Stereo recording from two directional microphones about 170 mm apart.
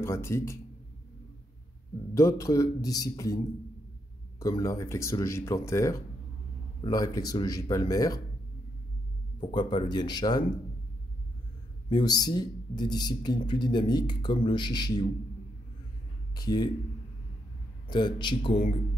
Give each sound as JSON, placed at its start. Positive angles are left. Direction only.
{"t": 0.0, "sound": "speech", "side_deg": 15}
{"t": 2.1, "sound": "speech", "side_deg": 20}
{"t": 4.4, "sound": "speech", "side_deg": 20}
{"t": 9.5, "sound": "speech", "side_deg": 30}
{"t": 11.9, "sound": "speech", "side_deg": 25}
{"t": 16.3, "sound": "speech", "side_deg": 25}
{"t": 17.8, "sound": "speech", "side_deg": 25}